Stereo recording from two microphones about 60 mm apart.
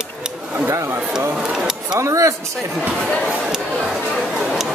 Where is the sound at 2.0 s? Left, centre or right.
Right.